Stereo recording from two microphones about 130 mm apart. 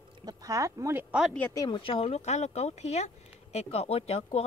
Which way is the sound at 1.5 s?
35° left (ahead or behind).